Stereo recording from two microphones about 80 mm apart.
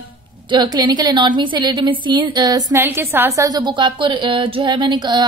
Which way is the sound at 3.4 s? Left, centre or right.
Right.